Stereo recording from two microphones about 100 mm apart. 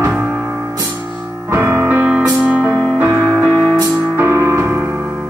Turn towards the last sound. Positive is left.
turn(degrees=-25)  # may be behind; listen again after turning